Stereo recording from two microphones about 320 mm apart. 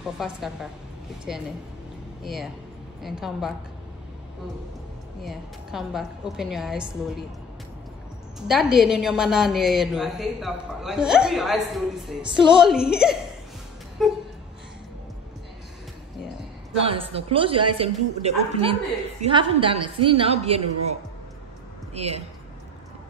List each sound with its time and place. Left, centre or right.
0.0 s a woman's voice: centre
5.2 s a woman's voice: centre
8.5 s a woman's voice: centre
16.8 s a woman's voice: centre
21.9 s a woman's voice: centre